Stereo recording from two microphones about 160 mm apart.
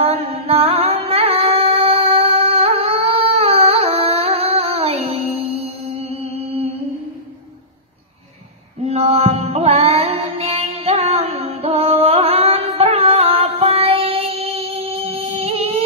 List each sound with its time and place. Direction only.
0.0 s music: 35° right (ahead or behind)
8.8 s female singing: 40° right (ahead or behind)